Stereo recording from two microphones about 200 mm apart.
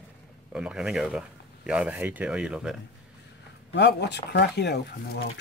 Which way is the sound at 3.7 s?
60° left (ahead or behind).